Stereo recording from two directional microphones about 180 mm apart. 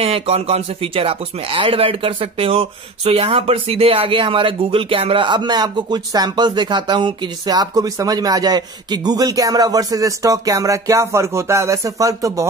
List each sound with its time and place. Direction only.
0.0 s speech: 35° right (ahead or behind); by 12.4 s 20° right (ahead or behind)